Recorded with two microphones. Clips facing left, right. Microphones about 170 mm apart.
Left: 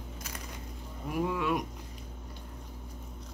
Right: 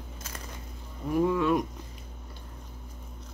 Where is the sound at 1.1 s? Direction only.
10° left (ahead or behind).